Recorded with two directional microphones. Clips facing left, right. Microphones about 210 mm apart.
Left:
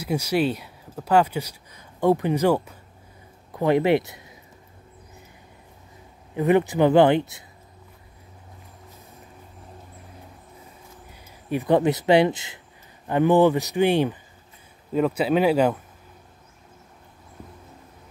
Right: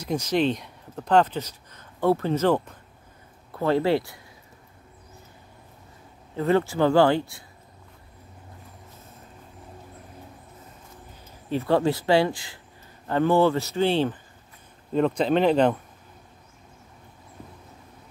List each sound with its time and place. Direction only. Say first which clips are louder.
0.0 s speech: left 1 dB; 10° left (ahead or behind)
6.3 s speech: left 3 dB; 15° left (ahead or behind)
11.1 s speech: left 1 dB; 15° left (ahead or behind)